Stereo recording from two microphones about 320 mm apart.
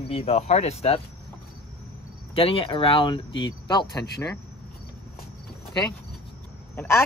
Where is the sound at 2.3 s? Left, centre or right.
Centre.